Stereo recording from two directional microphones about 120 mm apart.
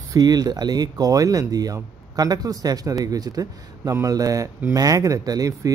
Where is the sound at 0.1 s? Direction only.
35° right (ahead or behind).